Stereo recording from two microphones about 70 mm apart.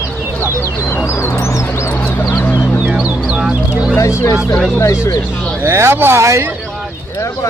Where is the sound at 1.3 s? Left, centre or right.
Left.